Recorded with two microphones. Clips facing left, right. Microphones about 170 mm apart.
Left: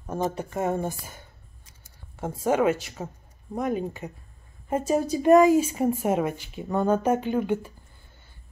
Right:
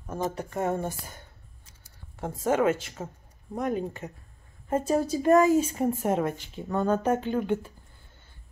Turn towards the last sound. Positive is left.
turn(degrees=10)  # may be behind; listen again after turning